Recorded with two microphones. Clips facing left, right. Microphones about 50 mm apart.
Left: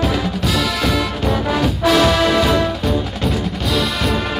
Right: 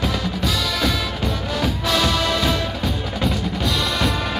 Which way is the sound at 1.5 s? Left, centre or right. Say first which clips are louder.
Left 6 dB; centre.